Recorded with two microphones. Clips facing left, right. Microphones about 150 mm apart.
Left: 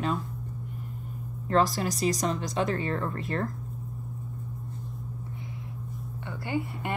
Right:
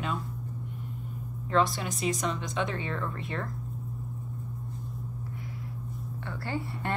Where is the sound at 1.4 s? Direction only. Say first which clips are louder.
Left 2 dB; 40° left (ahead or behind).